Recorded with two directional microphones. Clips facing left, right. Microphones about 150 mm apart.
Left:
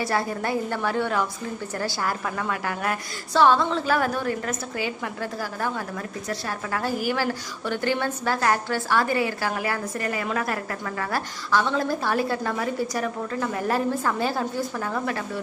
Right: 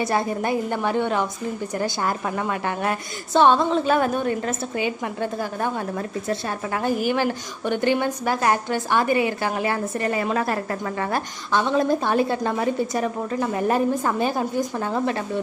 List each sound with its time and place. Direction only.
0.0 s a woman's voice: 20° right (ahead or behind)